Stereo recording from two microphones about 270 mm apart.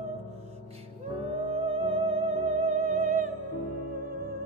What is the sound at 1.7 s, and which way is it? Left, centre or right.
Music, right.